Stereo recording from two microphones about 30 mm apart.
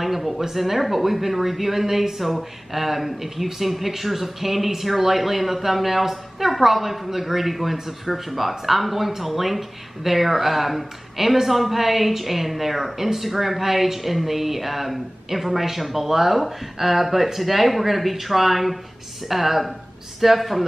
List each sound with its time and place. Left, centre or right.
0.0 s speech: centre